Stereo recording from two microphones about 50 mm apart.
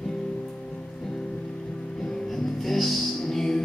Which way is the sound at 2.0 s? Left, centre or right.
Centre.